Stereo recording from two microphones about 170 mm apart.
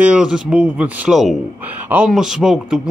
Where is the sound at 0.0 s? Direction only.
5° right (ahead or behind).